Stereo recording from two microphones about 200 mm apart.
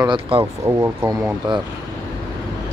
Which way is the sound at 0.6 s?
15° right (ahead or behind).